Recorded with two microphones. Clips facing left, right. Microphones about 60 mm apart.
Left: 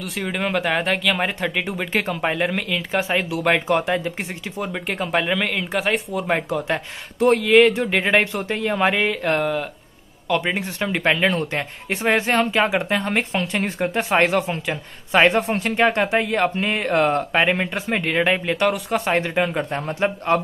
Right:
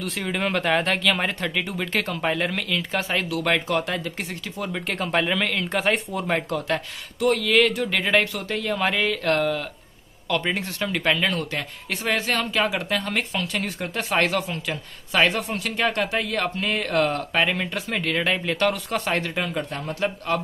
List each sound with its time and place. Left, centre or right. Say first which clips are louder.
0.0 s speech: left 1 dB; centre; by 4.6 s left
4.7 s speech: left 1 dB; centre
6.3 s speech: left 2 dB; centre
7.2 s speech: left 5 dB; left